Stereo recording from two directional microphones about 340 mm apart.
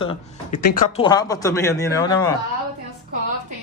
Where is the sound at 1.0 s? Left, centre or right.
Centre.